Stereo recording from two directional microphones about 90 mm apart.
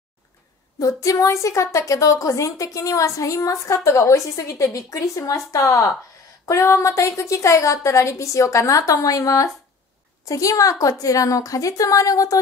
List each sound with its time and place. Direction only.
0.7 s a woman's voice: 35° left (ahead or behind)